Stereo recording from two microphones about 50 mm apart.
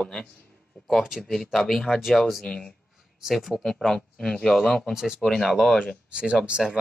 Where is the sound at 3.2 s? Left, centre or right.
Centre.